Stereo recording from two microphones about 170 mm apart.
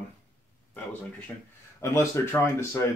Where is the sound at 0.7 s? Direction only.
10° left (ahead or behind).